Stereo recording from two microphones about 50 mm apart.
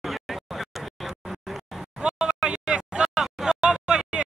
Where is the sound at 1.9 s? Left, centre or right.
Centre.